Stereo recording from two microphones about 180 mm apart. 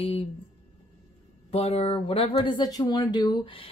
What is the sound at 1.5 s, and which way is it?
Speech, 35° left (ahead or behind).